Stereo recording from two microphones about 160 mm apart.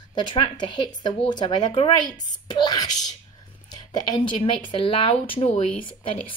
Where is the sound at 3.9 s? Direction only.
25° left (ahead or behind).